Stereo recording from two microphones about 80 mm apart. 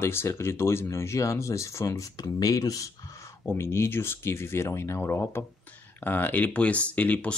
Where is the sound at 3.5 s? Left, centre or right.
Left; by 7.3 s centre.